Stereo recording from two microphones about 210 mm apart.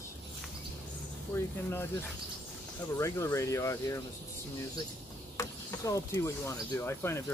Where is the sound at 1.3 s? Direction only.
10° left (ahead or behind).